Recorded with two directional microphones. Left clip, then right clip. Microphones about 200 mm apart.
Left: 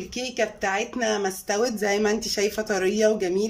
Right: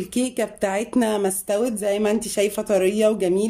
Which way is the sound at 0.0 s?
25° right (ahead or behind).